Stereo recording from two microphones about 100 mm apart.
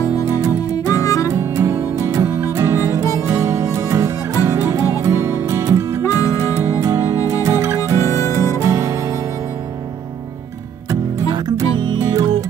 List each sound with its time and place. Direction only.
0.2 s music: 30° right (ahead or behind)
1.0 s music: 35° left (ahead or behind)
1.4 s music: 30° right (ahead or behind)
3.0 s music: 30° left (ahead or behind)
3.3 s music: 30° right (ahead or behind)
10.9 s music: 40° right (ahead or behind)
11.6 s music: 55° right (ahead or behind)
12.0 s music: 35° right (ahead or behind)